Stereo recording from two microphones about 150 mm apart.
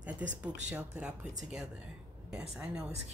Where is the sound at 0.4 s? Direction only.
5° right (ahead or behind).